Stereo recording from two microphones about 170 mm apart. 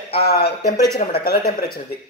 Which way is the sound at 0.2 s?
70° left (ahead or behind).